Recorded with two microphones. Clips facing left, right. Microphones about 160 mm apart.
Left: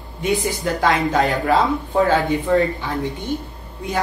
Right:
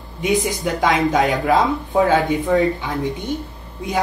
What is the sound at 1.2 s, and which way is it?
Speech, centre (ahead or behind).